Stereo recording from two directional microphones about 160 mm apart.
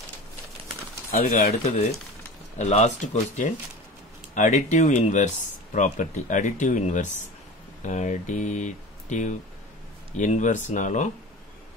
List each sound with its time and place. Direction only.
1.1 s speech: 65° left (ahead or behind)
1.5 s speech: 40° left (ahead or behind)